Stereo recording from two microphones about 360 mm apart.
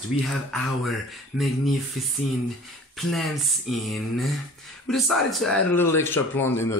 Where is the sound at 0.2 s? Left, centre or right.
Centre.